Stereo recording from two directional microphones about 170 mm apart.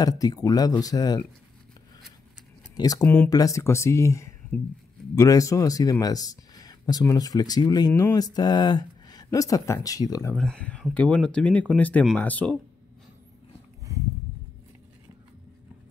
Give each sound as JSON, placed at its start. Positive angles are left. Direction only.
{"t": 0.0, "sound": "speech", "side_deg": 20}
{"t": 2.7, "sound": "speech", "side_deg": 20}
{"t": 3.0, "sound": "speech", "side_deg": 10}
{"t": 10.3, "sound": "speech", "side_deg": 5}